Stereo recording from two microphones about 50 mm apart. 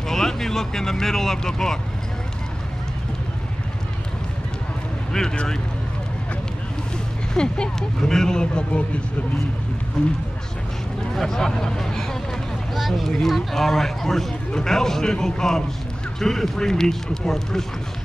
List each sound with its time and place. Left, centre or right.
0.1 s a man's voice: centre
5.1 s a man's voice: centre
7.3 s a man's voice: centre
11.1 s a man's voice: centre